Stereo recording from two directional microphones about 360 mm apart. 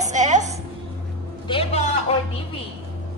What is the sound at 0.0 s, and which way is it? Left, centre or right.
Music, centre.